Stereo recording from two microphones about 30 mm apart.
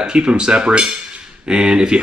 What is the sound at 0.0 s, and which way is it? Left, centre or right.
Speech, right.